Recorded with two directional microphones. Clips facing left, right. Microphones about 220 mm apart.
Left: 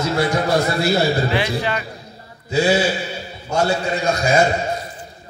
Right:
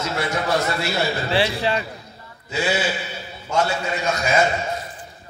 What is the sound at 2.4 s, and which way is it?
A man's voice, 35° left (ahead or behind).